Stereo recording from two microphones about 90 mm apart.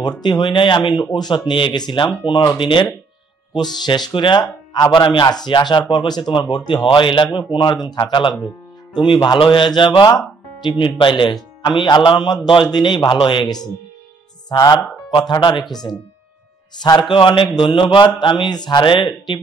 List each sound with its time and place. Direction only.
0.0 s speech: 55° left (ahead or behind)
7.5 s speech: 55° left (ahead or behind)
17.1 s speech: 65° left (ahead or behind)